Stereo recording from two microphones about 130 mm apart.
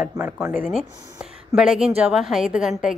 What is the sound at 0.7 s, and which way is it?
A woman's voice, centre (ahead or behind).